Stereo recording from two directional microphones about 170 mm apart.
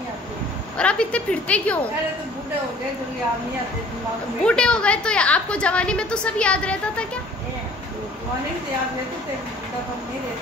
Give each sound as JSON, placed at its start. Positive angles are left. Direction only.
{"t": 0.7, "sound": "a woman's voice", "side_deg": 5}
{"t": 4.5, "sound": "a woman's voice", "side_deg": 5}